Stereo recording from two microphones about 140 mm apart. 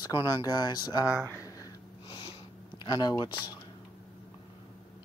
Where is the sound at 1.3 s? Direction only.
25° left (ahead or behind).